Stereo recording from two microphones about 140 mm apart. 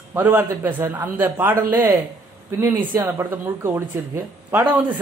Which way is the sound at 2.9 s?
15° right (ahead or behind).